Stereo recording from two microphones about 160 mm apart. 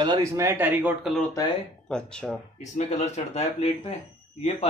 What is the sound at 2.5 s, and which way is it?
Speech, 45° left (ahead or behind).